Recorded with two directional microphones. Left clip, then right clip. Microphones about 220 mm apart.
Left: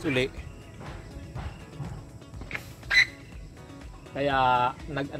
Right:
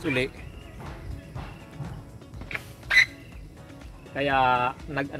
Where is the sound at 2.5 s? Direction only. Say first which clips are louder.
Right 2 dB; 45° right (ahead or behind).